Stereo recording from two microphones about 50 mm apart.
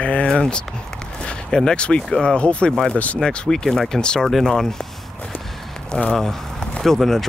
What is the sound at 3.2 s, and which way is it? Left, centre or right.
Speech, centre.